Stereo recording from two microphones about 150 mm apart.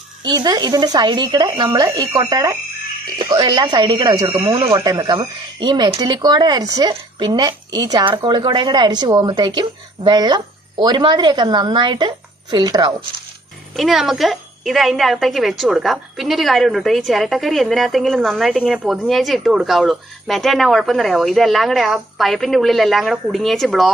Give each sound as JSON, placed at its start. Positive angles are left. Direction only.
{"t": 0.2, "sound": "speech", "side_deg": -30}
{"t": 13.7, "sound": "a woman's voice", "side_deg": 0}